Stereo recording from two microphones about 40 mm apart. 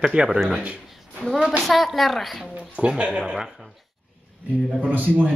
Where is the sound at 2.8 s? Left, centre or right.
Right.